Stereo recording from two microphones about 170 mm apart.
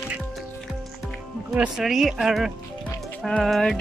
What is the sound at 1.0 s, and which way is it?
Speech, centre (ahead or behind).